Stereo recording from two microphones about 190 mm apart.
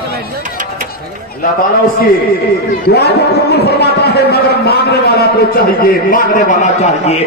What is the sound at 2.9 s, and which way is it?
A man's voice, 60° left (ahead or behind).